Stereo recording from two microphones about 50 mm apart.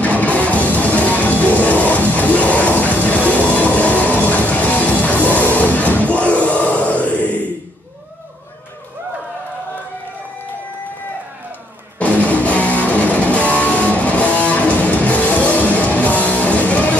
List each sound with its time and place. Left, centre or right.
0.0 s music: left
12.0 s music: left